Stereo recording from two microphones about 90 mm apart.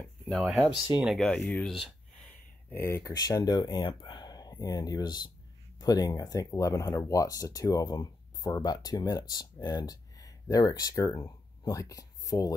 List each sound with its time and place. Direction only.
0.3 s speech: centre (ahead or behind)
1.2 s speech: 10° left (ahead or behind)
2.2 s a sound: 25° left (ahead or behind)
3.1 s speech: 50° left (ahead or behind)